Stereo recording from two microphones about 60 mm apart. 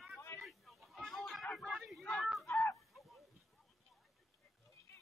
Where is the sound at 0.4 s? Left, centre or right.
Centre.